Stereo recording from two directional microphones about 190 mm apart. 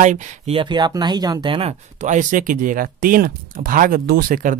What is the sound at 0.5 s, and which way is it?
Speech, 25° right (ahead or behind).